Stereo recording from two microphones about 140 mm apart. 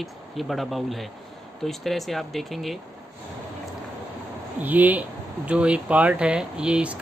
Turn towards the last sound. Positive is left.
turn(degrees=-10)  # may be behind; listen again after turning